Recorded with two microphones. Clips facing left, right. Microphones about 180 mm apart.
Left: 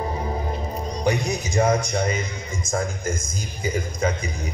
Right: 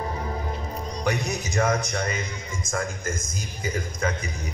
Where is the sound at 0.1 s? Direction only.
30° left (ahead or behind).